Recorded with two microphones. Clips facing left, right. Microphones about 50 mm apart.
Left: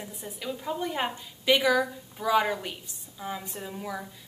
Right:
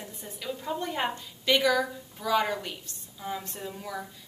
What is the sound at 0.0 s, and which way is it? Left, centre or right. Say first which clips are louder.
A woman's voice: left 2 dB; centre.